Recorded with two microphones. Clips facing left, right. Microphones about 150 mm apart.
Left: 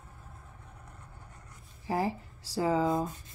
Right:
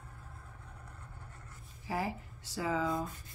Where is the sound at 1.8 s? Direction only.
35° left (ahead or behind).